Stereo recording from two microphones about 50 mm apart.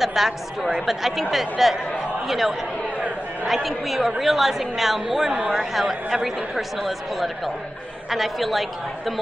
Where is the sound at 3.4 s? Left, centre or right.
Centre.